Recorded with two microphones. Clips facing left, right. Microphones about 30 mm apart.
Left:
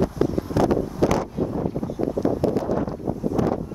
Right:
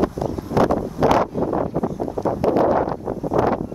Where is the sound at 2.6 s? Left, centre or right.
Right.